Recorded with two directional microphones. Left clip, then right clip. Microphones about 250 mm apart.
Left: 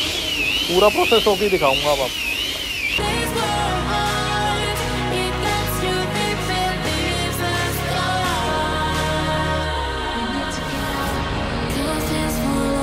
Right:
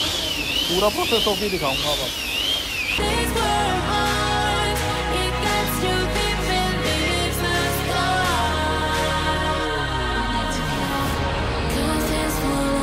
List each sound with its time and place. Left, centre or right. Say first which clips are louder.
0.7 s speech: left 6 dB; left